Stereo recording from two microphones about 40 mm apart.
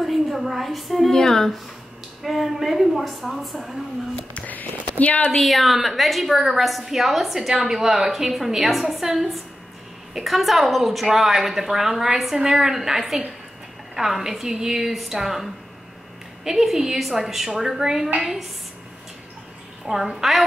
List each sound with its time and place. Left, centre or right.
0.0 s a woman's voice: centre
1.1 s speech: centre
2.2 s a woman's voice: centre
4.5 s speech: left
5.3 s a woman's voice: centre
19.9 s a woman's voice: centre